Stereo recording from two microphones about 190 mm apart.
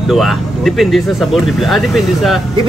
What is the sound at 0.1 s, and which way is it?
A man's voice, centre (ahead or behind).